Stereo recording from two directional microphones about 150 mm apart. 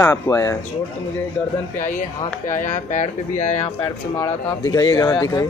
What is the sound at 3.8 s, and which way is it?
Speech, 15° left (ahead or behind).